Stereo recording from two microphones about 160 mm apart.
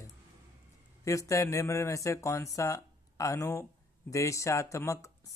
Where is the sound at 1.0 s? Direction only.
20° left (ahead or behind).